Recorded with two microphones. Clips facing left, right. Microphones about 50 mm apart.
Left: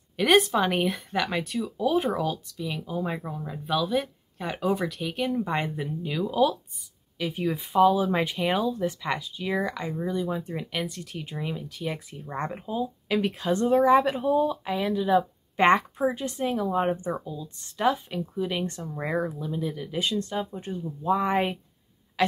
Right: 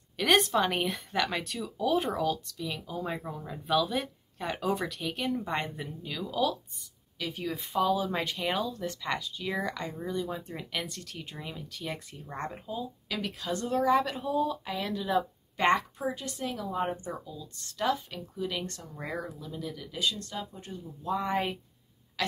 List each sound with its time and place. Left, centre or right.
0.2 s speech: centre
12.4 s speech: left
15.5 s speech: left